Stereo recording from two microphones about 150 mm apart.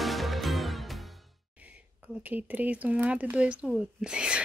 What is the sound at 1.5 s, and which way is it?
Speech, 10° right (ahead or behind).